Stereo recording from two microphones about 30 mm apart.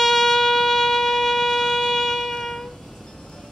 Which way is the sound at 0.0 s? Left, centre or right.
Centre.